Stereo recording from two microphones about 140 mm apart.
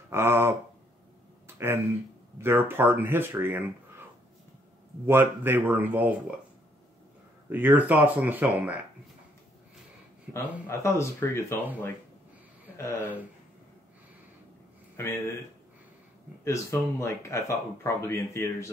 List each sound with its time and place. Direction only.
0.1 s speech: 15° right (ahead or behind)
2.4 s speech: 15° right (ahead or behind)
5.0 s speech: 15° right (ahead or behind)
7.4 s speech: 15° right (ahead or behind)
10.7 s speech: 20° left (ahead or behind)
12.7 s speech: 20° left (ahead or behind)
15.0 s speech: 15° left (ahead or behind)
16.4 s speech: 20° left (ahead or behind)